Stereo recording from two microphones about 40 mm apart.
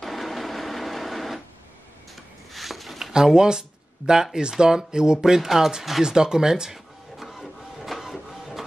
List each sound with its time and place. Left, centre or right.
0.0 s printer: centre
2.5 s a sound: centre
3.1 s speech: centre
6.0 s printer: centre